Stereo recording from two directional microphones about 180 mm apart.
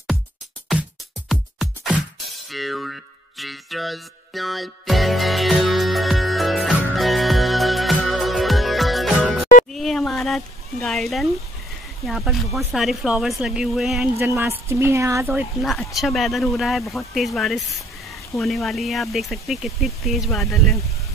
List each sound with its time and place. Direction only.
2.5 s music: centre (ahead or behind)
9.7 s a sound: centre (ahead or behind)
12.1 s speech: centre (ahead or behind)
14.1 s speech: 15° right (ahead or behind)
15.6 s speech: centre (ahead or behind)